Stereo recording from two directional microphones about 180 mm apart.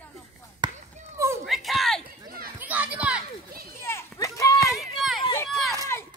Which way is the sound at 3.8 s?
15° left (ahead or behind).